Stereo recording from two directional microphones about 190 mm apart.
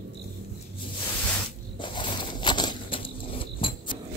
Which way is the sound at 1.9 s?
25° left (ahead or behind).